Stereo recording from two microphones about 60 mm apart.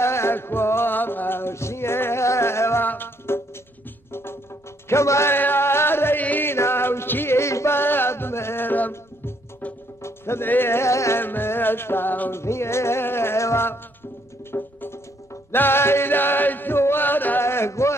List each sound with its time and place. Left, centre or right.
0.0 s music: left
2.8 s music: left
10.0 s music: left
11.1 s music: left
12.4 s music: left
17.4 s a sound: left